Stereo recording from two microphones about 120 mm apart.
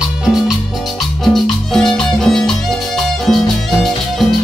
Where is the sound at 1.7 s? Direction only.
5° left (ahead or behind).